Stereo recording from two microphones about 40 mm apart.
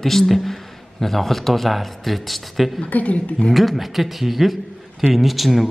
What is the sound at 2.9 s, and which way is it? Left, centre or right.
Speech, left.